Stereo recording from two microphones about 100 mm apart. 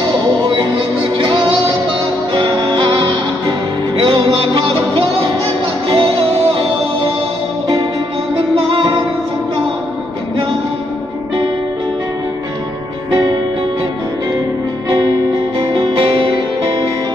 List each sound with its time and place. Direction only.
1.1 s music: 55° right (ahead or behind)
8.5 s music: 60° right (ahead or behind)
13.1 s music: 45° right (ahead or behind)
15.7 s music: 55° right (ahead or behind)